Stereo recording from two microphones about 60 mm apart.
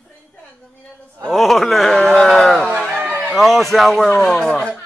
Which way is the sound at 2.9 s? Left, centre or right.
Right.